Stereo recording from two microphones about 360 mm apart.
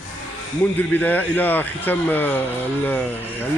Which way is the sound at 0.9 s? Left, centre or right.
Centre.